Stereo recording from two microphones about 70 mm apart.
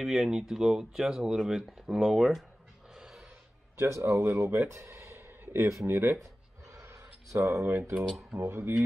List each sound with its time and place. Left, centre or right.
0.0 s speech: centre
2.9 s snort: centre
3.7 s speech: right
6.7 s a sound: right
8.1 s speech: centre
8.4 s speech: right